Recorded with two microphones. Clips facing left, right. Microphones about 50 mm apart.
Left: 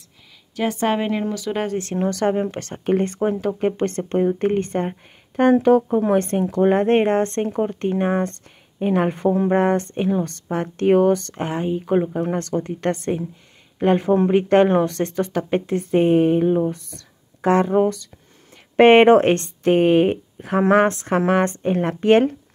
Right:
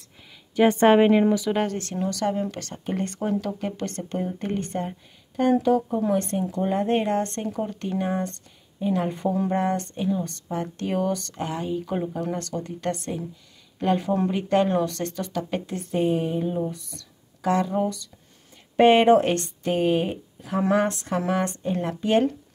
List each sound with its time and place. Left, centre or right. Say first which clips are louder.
0.6 s a woman's voice: right 5 dB; right
1.1 s speech: right 4 dB; centre
1.5 s speech: left 1 dB; centre
2.0 s speech: left 5 dB; left
9.9 s speech: left 5 dB; left